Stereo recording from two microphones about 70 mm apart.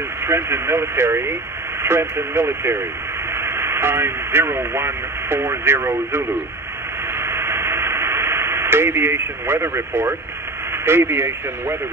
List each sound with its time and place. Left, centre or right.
0.2 s speech: right
7.2 s radio: right
10.7 s speech: right